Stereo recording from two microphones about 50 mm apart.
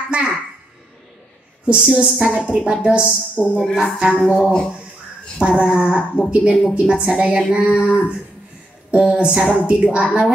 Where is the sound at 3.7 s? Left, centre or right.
Centre.